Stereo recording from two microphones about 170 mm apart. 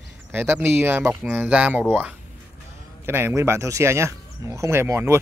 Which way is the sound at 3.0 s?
15° right (ahead or behind).